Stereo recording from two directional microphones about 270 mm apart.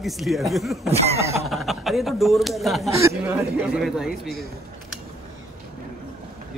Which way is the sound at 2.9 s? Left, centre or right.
Centre.